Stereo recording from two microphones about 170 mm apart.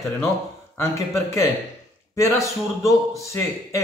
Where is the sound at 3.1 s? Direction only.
15° left (ahead or behind).